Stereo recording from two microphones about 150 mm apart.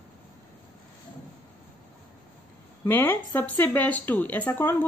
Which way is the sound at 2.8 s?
10° left (ahead or behind).